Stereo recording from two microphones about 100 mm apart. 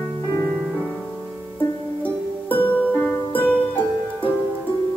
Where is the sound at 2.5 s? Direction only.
15° left (ahead or behind).